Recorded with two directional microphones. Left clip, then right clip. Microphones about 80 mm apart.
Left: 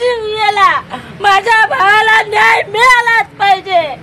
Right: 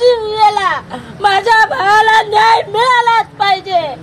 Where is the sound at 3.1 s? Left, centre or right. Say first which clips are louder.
Left 2 dB; right.